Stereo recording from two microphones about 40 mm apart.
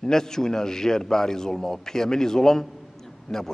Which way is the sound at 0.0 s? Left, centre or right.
Centre.